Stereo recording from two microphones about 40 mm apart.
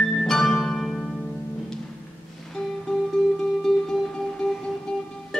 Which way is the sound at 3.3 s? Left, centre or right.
Centre.